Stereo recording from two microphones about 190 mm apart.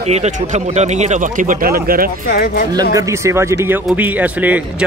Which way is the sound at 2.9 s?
15° right (ahead or behind).